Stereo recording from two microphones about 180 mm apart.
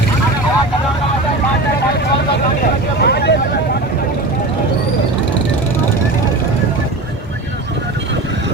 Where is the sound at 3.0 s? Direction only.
65° left (ahead or behind).